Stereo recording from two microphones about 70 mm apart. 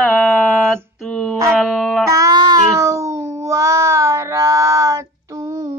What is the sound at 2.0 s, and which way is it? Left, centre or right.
Music, right.